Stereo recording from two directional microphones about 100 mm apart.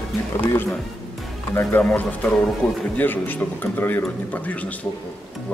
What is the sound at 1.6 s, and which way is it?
Speech, 20° left (ahead or behind).